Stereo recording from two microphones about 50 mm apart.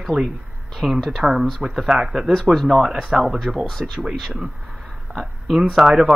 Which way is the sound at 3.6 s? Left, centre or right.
Centre.